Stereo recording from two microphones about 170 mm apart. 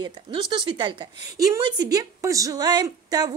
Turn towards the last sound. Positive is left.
turn(degrees=-20)  # may be behind; listen again after turning